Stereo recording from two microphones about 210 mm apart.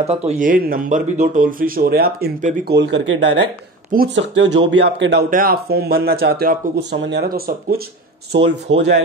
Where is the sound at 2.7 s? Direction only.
60° right (ahead or behind).